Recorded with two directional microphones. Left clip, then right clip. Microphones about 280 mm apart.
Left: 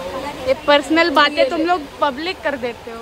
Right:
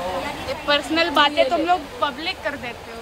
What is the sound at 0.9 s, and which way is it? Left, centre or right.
Speech, centre.